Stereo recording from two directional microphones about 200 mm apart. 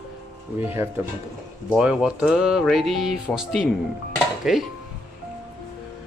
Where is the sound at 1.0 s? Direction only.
10° right (ahead or behind).